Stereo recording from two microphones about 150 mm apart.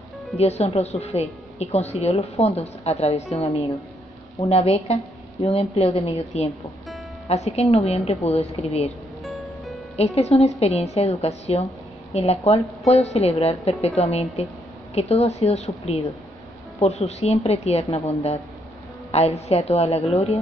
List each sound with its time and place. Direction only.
0.4 s a woman's voice: 45° left (ahead or behind)
9.9 s a woman's voice: 45° left (ahead or behind)